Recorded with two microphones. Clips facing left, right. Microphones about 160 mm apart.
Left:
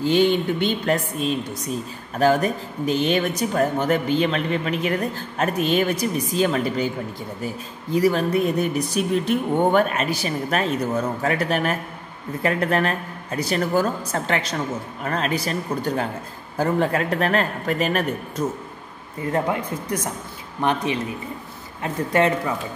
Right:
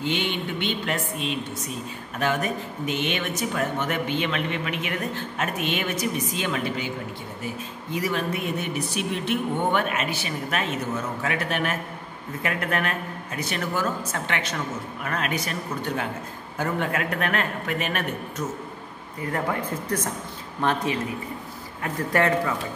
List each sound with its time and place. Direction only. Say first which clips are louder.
0.0 s speech: left 9 dB; 40° left (ahead or behind)
19.3 s speech: left 4 dB; 20° left (ahead or behind)